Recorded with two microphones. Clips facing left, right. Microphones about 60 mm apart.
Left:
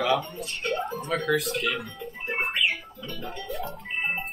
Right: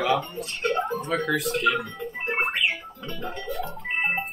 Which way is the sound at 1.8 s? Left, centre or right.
Right.